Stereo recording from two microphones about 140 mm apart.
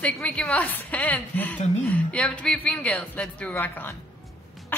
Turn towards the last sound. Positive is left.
turn(degrees=15)  # may be behind; listen again after turning